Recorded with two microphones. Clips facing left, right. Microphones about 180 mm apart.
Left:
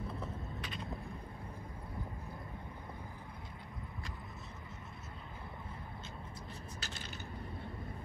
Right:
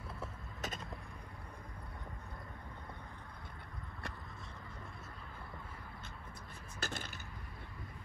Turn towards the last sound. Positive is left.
turn(degrees=-55)  # may be behind; listen again after turning